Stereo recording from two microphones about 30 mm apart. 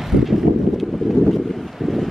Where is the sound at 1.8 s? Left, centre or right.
Centre.